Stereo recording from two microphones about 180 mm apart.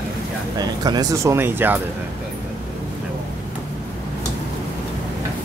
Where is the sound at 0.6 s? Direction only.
20° right (ahead or behind).